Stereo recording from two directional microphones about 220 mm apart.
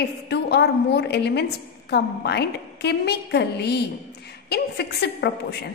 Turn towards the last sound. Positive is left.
turn(degrees=50)  # may be behind; listen again after turning